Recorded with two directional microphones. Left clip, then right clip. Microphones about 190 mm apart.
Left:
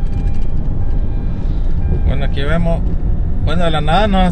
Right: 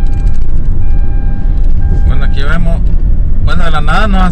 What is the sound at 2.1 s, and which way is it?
Music, 10° left (ahead or behind).